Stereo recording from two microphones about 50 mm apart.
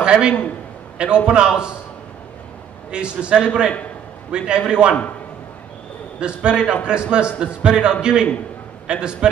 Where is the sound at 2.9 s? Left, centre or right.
Centre.